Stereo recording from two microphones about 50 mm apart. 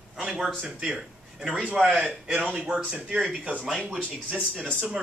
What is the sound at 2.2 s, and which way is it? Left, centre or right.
Speech, centre.